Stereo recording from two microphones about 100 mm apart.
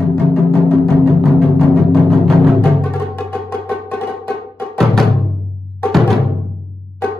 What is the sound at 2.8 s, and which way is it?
Music, 20° left (ahead or behind).